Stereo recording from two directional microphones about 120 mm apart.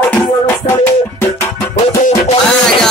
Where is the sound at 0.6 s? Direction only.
90° left.